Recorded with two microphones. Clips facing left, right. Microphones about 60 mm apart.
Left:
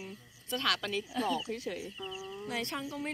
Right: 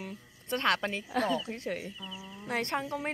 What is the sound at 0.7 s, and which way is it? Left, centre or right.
Speech, right.